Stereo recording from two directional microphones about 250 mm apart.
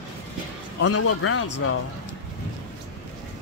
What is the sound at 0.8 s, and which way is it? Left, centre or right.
Speech, left.